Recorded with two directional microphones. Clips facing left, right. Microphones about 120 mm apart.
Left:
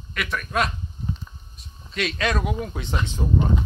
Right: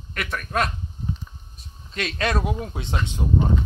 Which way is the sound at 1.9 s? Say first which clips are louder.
Even; 35° right (ahead or behind).